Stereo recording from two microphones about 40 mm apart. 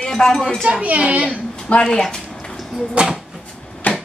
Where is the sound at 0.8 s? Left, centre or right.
Right.